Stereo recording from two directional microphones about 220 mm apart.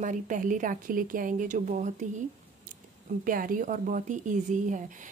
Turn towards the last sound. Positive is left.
turn(degrees=-35)  # may be behind; listen again after turning